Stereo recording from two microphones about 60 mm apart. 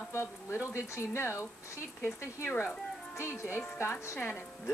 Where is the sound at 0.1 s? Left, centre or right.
Left.